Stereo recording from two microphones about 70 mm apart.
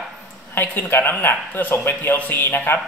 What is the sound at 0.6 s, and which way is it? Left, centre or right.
Speech, left.